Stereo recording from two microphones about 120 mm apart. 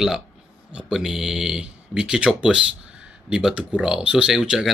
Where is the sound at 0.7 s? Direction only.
5° right (ahead or behind).